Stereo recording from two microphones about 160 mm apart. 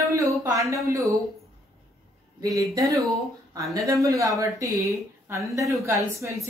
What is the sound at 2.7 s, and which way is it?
A woman's voice, 20° right (ahead or behind).